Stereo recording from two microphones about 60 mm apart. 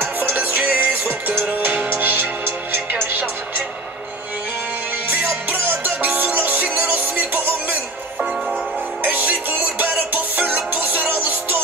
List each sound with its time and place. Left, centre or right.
0.0 s music: right
5.3 s music: right
9.0 s music: right